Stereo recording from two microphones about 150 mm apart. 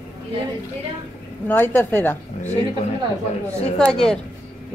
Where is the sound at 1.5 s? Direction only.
15° left (ahead or behind).